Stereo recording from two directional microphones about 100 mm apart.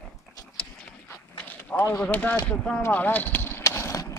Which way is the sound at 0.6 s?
10° left (ahead or behind).